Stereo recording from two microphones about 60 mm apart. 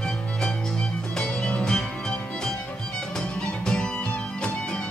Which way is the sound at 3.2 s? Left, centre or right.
Centre.